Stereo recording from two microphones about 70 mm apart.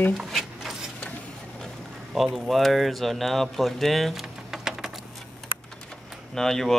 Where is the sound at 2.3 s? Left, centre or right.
Centre.